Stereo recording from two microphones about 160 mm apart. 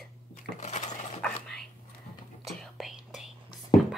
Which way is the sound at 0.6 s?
45° left (ahead or behind).